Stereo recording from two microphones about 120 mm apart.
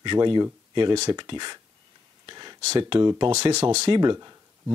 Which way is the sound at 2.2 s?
35° right (ahead or behind).